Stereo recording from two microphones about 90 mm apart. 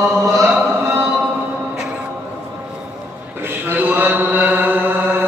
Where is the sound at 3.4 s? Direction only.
20° right (ahead or behind).